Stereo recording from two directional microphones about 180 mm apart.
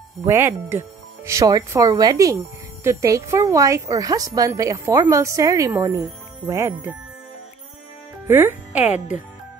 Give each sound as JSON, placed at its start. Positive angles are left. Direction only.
{"t": 0.2, "sound": "speech", "side_deg": -10}
{"t": 8.3, "sound": "speech", "side_deg": -15}